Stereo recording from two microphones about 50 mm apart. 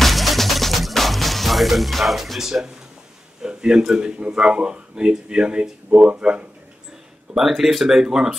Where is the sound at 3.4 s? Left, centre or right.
Centre.